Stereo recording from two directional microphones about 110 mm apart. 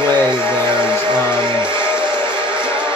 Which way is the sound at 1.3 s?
25° left (ahead or behind).